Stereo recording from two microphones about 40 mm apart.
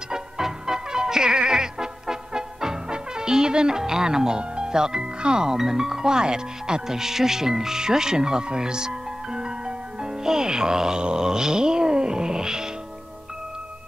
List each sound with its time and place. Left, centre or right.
0.1 s music: centre
5.6 s speech: centre